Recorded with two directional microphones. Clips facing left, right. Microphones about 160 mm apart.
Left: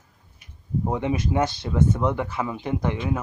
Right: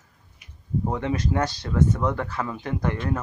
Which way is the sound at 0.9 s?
15° left (ahead or behind).